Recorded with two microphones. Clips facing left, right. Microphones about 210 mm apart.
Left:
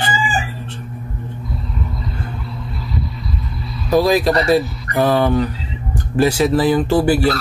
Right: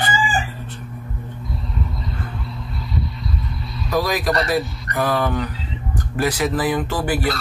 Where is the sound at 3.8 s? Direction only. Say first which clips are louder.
Left 7 dB; 25° left (ahead or behind).